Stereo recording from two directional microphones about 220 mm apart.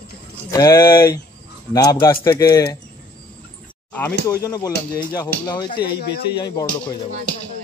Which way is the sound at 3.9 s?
10° left (ahead or behind).